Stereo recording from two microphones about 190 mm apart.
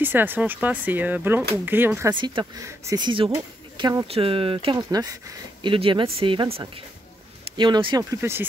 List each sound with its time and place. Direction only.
0.0 s speech: 10° right (ahead or behind)
2.1 s speech: 25° right (ahead or behind)